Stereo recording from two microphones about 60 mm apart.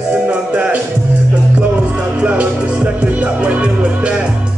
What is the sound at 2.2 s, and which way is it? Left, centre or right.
Music, right.